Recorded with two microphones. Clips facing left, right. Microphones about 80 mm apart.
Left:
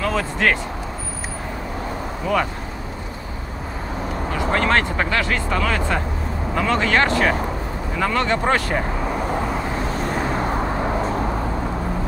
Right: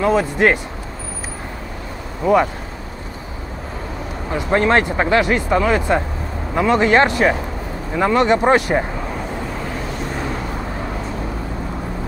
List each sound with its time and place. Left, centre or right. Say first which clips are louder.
0.0 s speech: right 5 dB; right
2.2 s speech: right 7 dB; centre
4.3 s speech: right 4 dB; right